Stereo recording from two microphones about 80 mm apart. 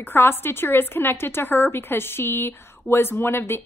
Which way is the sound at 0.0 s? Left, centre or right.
Left.